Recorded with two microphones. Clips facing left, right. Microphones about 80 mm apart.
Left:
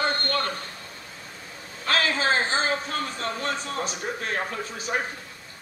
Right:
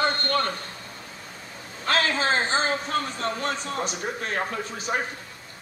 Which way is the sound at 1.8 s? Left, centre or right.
Right.